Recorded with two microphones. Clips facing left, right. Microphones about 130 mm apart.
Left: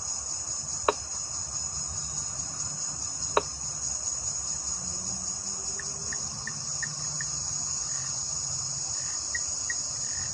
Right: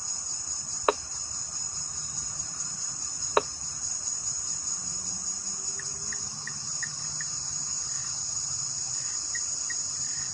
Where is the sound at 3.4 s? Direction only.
90° right.